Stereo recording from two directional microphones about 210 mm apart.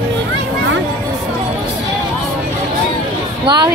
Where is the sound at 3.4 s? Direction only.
20° right (ahead or behind).